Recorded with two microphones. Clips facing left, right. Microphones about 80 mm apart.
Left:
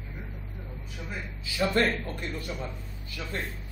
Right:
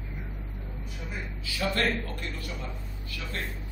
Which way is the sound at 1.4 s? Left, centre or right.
Left.